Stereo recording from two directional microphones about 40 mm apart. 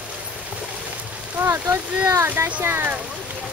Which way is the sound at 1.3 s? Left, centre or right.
Right.